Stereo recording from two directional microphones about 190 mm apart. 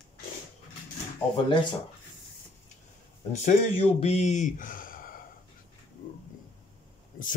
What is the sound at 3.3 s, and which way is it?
Speech, 35° left (ahead or behind).